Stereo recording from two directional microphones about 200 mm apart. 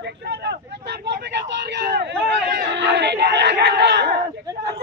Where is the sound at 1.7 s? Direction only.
55° right (ahead or behind).